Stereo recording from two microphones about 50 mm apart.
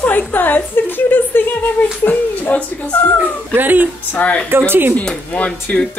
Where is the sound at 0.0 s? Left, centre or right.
Left.